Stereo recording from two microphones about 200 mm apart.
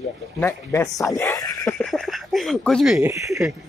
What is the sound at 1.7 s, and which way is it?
Speech, 5° left (ahead or behind).